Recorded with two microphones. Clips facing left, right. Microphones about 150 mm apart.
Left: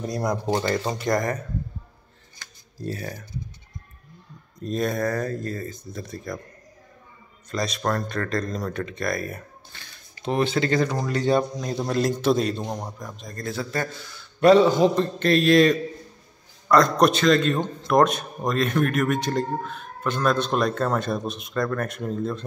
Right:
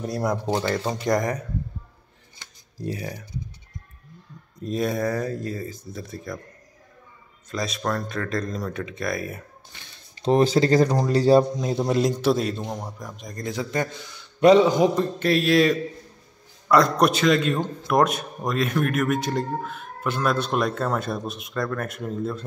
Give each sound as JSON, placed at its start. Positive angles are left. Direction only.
{"t": 0.0, "sound": "a man's voice", "side_deg": -5}
{"t": 2.8, "sound": "a man's voice", "side_deg": -15}
{"t": 4.6, "sound": "a man's voice", "side_deg": -10}
{"t": 7.5, "sound": "a man's voice", "side_deg": -5}
{"t": 9.7, "sound": "a man's voice", "side_deg": -15}
{"t": 10.2, "sound": "speech", "side_deg": -35}
{"t": 11.5, "sound": "a man's voice", "side_deg": -25}
{"t": 11.9, "sound": "a man's voice", "side_deg": -10}
{"t": 12.6, "sound": "a man's voice", "side_deg": 15}
{"t": 13.0, "sound": "a man's voice", "side_deg": -15}